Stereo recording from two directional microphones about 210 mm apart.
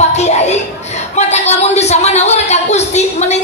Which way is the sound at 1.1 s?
30° left (ahead or behind).